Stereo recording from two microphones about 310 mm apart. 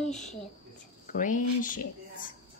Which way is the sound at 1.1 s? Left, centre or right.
Left.